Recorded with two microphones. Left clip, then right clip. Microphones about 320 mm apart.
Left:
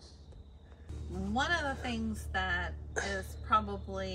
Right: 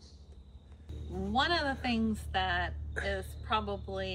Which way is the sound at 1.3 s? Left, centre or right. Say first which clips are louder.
Right 2 dB; centre.